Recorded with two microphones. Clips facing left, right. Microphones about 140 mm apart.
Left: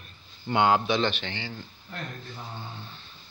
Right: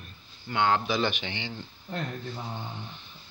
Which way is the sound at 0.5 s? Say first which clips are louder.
Left 3 dB; 15° left (ahead or behind).